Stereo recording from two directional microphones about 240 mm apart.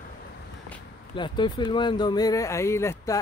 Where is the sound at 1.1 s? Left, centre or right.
Centre.